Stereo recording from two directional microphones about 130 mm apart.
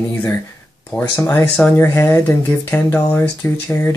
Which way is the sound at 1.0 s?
20° left (ahead or behind).